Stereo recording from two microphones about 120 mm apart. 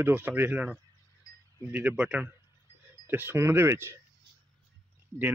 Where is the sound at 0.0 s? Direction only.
15° right (ahead or behind).